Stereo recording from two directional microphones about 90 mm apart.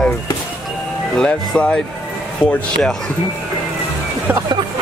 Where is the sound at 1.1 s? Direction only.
10° left (ahead or behind).